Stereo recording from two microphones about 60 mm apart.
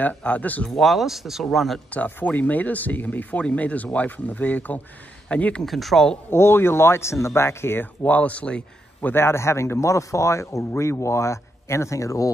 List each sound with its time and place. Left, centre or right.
0.2 s speech: left
0.7 s speech: centre
1.9 s speech: left
5.6 s speech: centre
6.3 s speech: left
7.8 s speech: left
9.1 s speech: left